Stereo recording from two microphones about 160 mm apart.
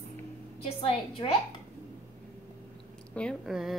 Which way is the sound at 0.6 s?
40° left (ahead or behind).